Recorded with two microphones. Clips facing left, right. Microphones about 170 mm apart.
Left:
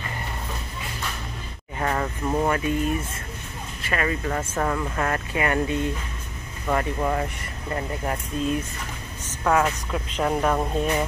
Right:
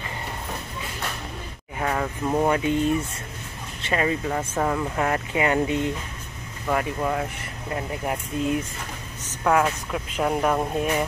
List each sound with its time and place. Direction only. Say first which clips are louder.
1.8 s speech: even; 5° right (ahead or behind)
2.4 s speech: right 3 dB; 20° right (ahead or behind)
3.8 s speech: right 2 dB; 20° right (ahead or behind)
4.3 s speech: right 1 dB; 10° right (ahead or behind)
6.7 s speech: even; centre (ahead or behind)
7.7 s speech: even; 10° right (ahead or behind)